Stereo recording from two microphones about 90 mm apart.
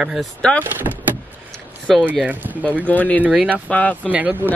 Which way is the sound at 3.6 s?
15° left (ahead or behind).